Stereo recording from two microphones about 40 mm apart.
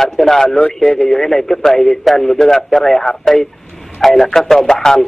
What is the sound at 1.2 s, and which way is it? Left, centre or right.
A man's voice, centre.